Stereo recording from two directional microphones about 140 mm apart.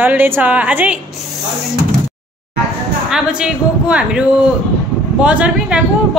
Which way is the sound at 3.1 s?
5° right (ahead or behind).